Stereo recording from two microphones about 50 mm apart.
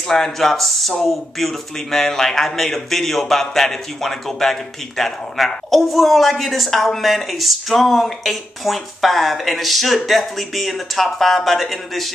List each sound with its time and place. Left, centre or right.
0.1 s speech: centre